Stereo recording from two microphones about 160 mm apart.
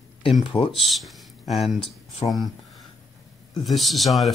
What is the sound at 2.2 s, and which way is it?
Speech, 30° left (ahead or behind).